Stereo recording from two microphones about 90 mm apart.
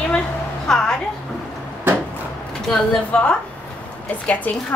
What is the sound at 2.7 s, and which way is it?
A woman's voice, 10° left (ahead or behind).